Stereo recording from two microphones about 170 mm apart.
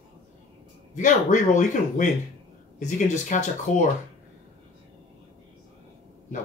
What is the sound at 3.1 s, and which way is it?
Speech, 45° left (ahead or behind).